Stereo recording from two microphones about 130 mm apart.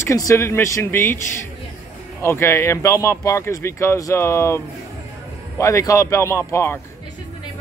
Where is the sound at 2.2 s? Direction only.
20° left (ahead or behind).